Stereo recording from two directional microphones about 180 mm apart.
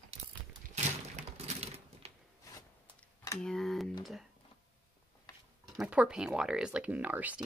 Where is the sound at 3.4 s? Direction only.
5° left (ahead or behind).